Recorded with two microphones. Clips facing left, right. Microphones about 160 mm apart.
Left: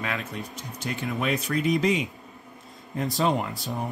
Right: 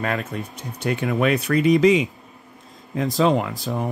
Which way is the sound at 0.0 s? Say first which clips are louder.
Right 6 dB; 45° right (ahead or behind).